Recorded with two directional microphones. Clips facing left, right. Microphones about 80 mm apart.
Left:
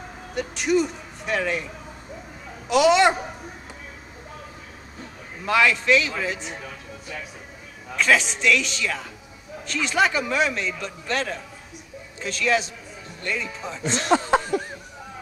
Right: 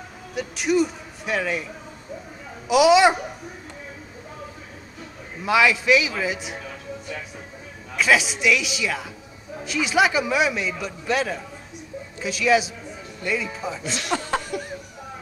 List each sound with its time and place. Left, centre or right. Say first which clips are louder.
0.3 s a man's voice: even; centre
2.7 s speech: right 2 dB; centre
5.4 s a man's voice: right 1 dB; centre
7.9 s a man's voice: right 1 dB; centre
13.8 s speech: left 8 dB; left